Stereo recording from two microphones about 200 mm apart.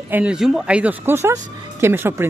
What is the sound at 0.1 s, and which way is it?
Speech, 5° right (ahead or behind).